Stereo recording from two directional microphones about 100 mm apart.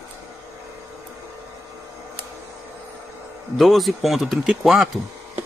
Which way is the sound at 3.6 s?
Centre (ahead or behind).